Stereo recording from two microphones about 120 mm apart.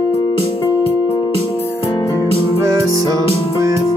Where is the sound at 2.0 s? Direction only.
30° left (ahead or behind).